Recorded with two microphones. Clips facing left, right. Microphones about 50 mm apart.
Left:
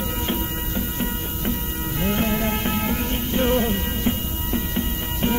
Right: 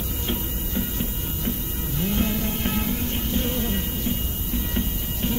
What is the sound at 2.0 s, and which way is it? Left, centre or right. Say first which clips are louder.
Music: left 3 dB; left.